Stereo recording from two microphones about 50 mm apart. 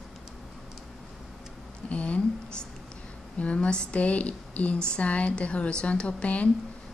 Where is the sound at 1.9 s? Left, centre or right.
Left.